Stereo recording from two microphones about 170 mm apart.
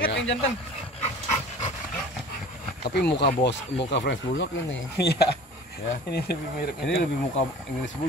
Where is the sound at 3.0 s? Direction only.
80° left.